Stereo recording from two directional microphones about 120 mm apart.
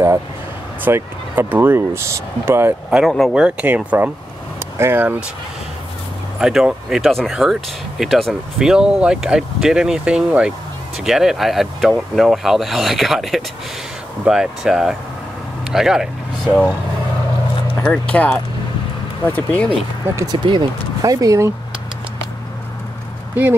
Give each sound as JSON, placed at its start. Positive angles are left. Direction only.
{"t": 0.8, "sound": "speech", "side_deg": -20}
{"t": 3.1, "sound": "speech", "side_deg": 0}
{"t": 3.4, "sound": "speech", "side_deg": -10}
{"t": 4.6, "sound": "vehicle", "side_deg": -20}
{"t": 6.4, "sound": "speech", "side_deg": -5}
{"t": 17.8, "sound": "speech", "side_deg": 10}
{"t": 20.4, "sound": "speech", "side_deg": -35}